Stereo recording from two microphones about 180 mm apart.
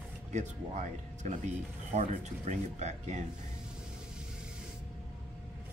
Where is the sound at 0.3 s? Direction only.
40° right (ahead or behind).